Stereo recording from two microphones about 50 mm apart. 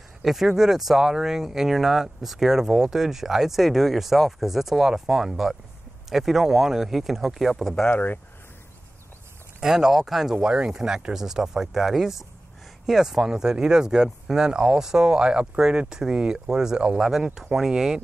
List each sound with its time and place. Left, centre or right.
0.2 s speech: centre
7.9 s speech: left
9.6 s speech: centre
10.3 s speech: centre
17.1 s speech: centre